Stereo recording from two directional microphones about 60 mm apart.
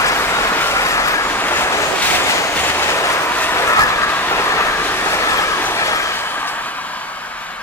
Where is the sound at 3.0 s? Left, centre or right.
Left.